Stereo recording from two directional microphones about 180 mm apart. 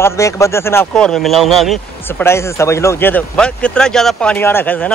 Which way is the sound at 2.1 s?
15° left (ahead or behind).